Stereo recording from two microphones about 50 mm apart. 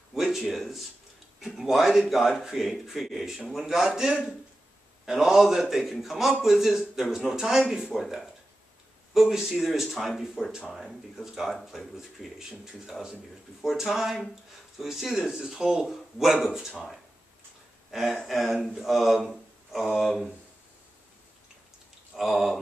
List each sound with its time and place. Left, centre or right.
0.1 s speech: centre
7.9 s speech: centre
17.9 s speech: centre
22.1 s speech: centre